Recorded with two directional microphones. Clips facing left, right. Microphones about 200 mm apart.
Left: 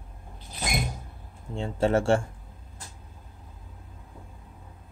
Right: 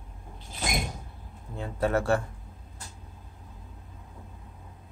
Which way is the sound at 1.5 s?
25° left (ahead or behind).